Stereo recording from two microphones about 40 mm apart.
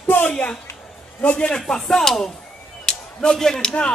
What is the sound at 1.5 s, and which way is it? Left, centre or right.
Speech, centre.